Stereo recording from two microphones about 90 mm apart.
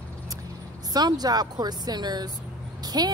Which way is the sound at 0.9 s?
50° right (ahead or behind).